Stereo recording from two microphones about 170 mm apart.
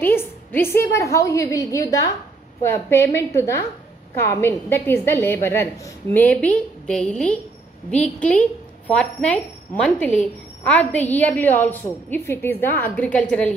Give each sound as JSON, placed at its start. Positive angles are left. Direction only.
{"t": 0.0, "sound": "a woman's voice", "side_deg": 15}